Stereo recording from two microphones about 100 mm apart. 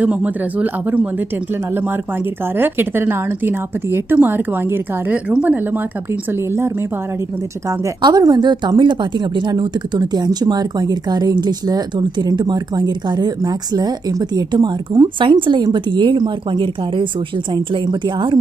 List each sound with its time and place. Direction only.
0.0 s a man's voice: 15° right (ahead or behind)
2.5 s a woman's voice: 20° right (ahead or behind)
8.0 s a woman's voice: 40° right (ahead or behind)